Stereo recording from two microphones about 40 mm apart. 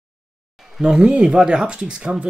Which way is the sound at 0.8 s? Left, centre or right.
Right.